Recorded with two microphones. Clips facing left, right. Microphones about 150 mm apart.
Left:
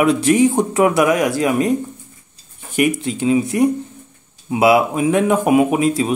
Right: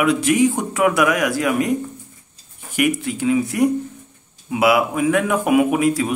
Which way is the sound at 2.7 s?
25° left (ahead or behind).